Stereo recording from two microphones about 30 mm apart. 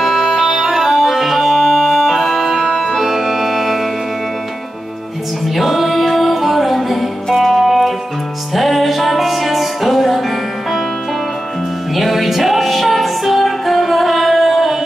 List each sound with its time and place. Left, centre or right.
0.0 s music: centre
2.7 s organ: centre
3.0 s organ: centre
5.6 s music: centre
11.9 s music: centre